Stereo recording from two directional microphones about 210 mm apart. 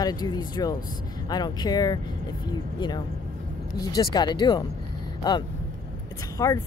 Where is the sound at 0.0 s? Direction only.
20° left (ahead or behind).